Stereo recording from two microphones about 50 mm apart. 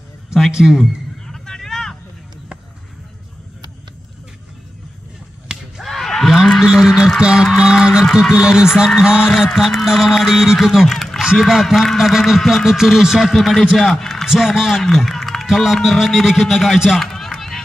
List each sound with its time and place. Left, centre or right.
0.3 s a man's voice: centre
1.2 s vehicle: centre
5.8 s slap: centre
6.6 s a sound: centre
7.2 s a man's voice: centre
9.6 s a man's voice: centre
13.2 s a man's voice: centre
17.0 s run: centre